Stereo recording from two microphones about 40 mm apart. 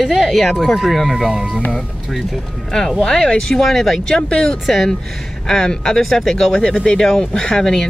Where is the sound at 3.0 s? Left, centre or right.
Centre.